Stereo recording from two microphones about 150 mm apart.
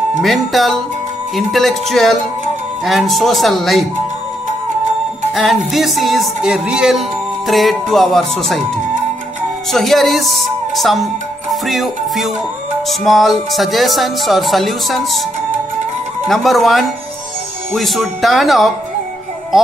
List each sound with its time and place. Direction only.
0.2 s music: centre (ahead or behind)
5.3 s music: centre (ahead or behind)
9.7 s music: centre (ahead or behind)
16.3 s music: centre (ahead or behind)